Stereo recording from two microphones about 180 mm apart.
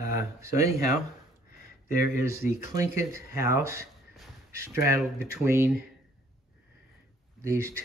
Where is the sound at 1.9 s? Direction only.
15° right (ahead or behind).